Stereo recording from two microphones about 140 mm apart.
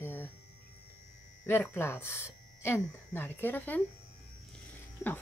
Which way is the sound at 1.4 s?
15° left (ahead or behind).